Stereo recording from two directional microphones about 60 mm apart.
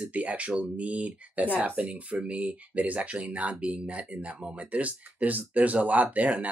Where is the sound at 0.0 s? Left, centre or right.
Right.